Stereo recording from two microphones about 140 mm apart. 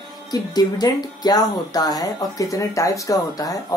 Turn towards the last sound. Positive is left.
turn(degrees=25)  # may be behind; listen again after turning